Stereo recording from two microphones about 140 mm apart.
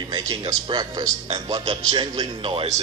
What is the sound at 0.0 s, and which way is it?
A man's voice, 30° right (ahead or behind).